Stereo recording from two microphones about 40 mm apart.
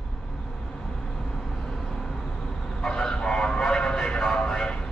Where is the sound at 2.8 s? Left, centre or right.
Left.